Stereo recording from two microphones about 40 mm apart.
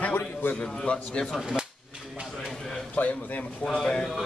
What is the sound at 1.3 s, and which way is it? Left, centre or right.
Speech, centre.